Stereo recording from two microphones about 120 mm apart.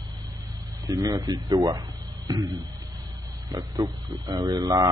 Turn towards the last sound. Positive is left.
turn(degrees=-25)  # may be behind; listen again after turning